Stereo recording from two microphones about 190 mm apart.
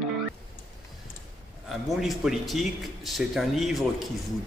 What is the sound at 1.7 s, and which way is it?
Speech, centre (ahead or behind).